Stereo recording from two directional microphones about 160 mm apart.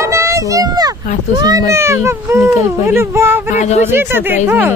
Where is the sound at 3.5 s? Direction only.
45° left (ahead or behind).